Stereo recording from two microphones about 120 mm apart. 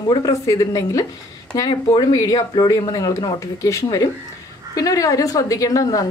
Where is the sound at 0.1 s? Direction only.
30° left (ahead or behind).